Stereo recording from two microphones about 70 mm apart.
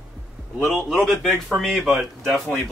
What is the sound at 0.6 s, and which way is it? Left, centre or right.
Speech, centre.